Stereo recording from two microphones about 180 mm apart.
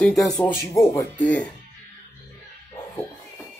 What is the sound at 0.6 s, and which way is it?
Speech, 15° left (ahead or behind).